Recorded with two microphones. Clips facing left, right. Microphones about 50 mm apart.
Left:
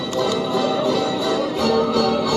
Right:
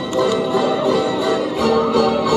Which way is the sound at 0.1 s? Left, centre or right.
Centre.